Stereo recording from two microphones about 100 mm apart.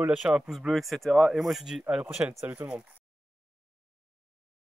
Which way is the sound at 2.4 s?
20° right (ahead or behind).